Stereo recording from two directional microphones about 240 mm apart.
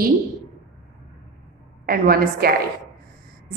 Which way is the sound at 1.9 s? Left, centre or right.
Right.